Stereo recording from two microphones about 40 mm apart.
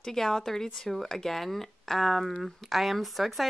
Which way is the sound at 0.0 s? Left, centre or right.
Centre.